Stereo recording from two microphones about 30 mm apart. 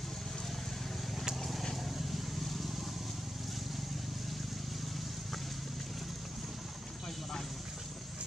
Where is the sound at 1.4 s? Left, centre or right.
Centre.